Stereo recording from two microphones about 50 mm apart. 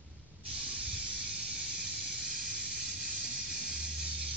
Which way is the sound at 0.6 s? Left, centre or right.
Right.